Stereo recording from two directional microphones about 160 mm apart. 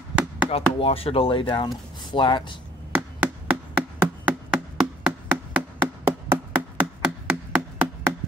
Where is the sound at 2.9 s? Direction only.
10° right (ahead or behind).